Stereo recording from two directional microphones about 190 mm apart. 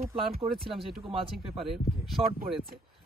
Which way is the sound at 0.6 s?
Centre (ahead or behind).